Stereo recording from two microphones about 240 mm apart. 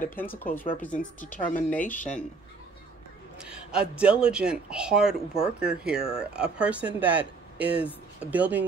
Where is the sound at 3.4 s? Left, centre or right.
Centre.